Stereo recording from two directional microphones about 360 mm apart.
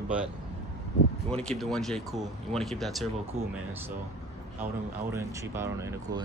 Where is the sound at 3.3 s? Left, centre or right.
Centre.